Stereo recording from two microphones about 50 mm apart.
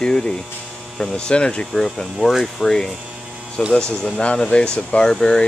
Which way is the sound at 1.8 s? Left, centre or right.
Centre.